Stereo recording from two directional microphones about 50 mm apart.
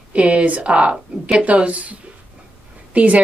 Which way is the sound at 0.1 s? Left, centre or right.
Right.